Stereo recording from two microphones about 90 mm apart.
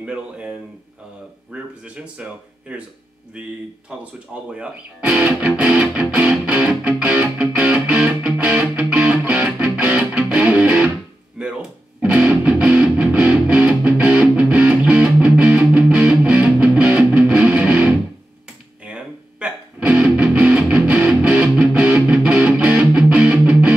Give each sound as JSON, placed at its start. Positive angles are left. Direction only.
{"t": 0.0, "sound": "speech", "side_deg": -15}
{"t": 7.1, "sound": "music", "side_deg": -10}
{"t": 11.4, "sound": "speech", "side_deg": -10}
{"t": 12.0, "sound": "music", "side_deg": -5}